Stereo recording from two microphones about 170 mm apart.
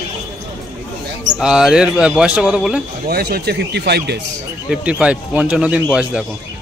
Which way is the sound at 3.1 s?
65° right (ahead or behind).